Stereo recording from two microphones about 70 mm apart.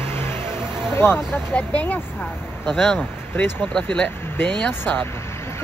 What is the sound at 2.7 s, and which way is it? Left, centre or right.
Speech, centre.